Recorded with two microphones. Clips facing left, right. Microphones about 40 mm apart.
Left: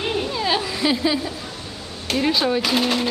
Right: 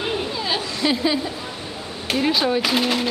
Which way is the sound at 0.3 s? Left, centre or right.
Centre.